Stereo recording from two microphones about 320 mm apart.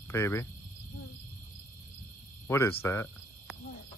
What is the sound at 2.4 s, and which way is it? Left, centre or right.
Speech, centre.